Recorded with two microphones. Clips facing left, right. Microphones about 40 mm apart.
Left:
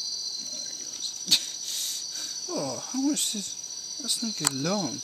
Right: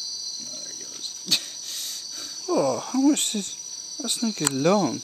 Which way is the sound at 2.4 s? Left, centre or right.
Right.